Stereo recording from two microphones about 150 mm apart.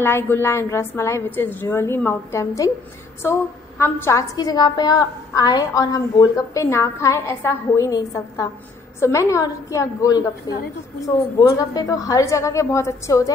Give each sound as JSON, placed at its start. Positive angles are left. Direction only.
{"t": 0.0, "sound": "a woman's voice", "side_deg": 15}